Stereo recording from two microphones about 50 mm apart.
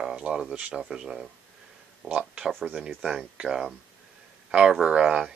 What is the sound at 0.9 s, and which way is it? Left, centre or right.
Speech, centre.